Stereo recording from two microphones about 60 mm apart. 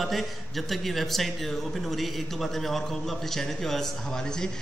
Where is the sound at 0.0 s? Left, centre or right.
Centre.